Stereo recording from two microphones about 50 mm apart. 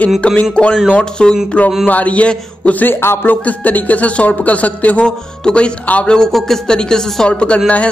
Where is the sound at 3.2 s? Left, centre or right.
Left.